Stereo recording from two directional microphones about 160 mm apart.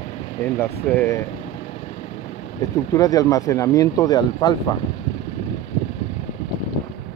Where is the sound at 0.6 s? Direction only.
15° left (ahead or behind).